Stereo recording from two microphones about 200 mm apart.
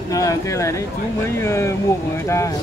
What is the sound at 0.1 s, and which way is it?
Speech, 15° left (ahead or behind).